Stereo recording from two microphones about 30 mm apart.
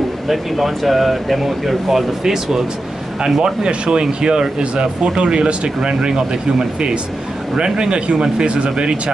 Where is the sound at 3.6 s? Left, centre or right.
Right.